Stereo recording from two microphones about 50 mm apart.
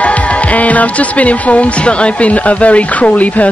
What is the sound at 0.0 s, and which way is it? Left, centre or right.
Speech, left.